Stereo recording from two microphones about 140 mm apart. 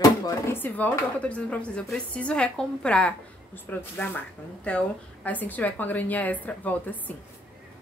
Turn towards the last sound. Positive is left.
turn(degrees=10)  # may be behind; listen again after turning